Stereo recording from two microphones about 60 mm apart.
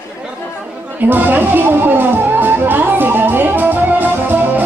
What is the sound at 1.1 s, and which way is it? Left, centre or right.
Music, right.